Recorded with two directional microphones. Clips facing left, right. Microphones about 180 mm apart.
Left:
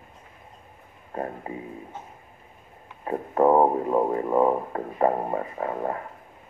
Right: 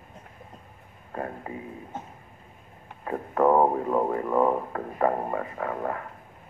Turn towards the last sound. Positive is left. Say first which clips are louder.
# left 2 dB
turn(degrees=25)  # may be behind; listen again after turning